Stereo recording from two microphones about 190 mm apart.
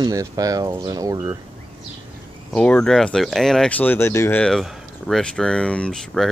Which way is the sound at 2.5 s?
5° left (ahead or behind).